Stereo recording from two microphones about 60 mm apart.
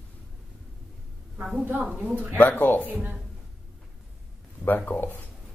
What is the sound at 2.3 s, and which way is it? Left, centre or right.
Speech, left.